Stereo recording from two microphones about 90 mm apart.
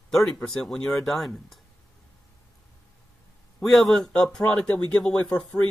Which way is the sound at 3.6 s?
5° left (ahead or behind).